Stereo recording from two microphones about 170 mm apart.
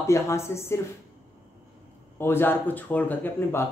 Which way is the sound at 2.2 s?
15° left (ahead or behind).